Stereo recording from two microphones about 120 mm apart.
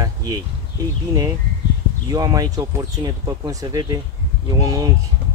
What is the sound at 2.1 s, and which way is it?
Speech, 30° right (ahead or behind).